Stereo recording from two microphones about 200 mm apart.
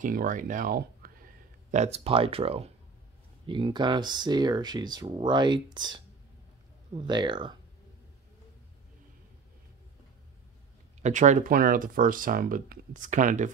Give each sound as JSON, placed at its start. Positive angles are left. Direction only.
{"t": 0.0, "sound": "speech", "side_deg": -40}
{"t": 1.7, "sound": "speech", "side_deg": -35}
{"t": 11.0, "sound": "speech", "side_deg": -35}